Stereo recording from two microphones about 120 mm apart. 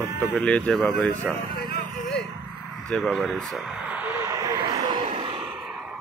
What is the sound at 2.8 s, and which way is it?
Vehicle, centre (ahead or behind).